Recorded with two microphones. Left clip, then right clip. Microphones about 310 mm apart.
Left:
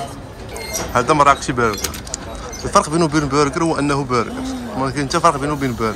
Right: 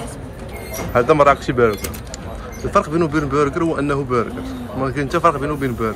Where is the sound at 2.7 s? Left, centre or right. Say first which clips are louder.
Left 2 dB; centre.